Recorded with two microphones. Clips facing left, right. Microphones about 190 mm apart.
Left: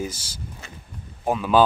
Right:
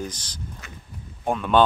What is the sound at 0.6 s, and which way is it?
Speech, 30° left (ahead or behind).